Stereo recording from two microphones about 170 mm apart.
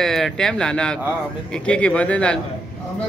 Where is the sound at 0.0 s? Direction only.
Centre (ahead or behind).